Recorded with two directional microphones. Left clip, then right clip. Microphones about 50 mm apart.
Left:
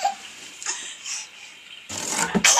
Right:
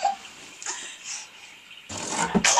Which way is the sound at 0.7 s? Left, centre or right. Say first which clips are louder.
Left 3 dB; centre.